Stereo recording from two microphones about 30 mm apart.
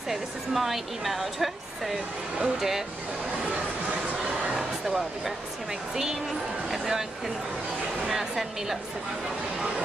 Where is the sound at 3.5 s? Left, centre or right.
Right.